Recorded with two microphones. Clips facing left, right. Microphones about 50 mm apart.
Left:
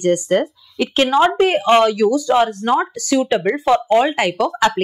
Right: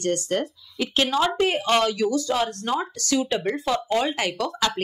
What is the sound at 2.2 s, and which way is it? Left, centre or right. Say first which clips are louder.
Speech: left 9 dB; left.